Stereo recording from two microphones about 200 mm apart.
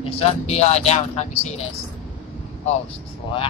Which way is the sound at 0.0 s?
30° left (ahead or behind).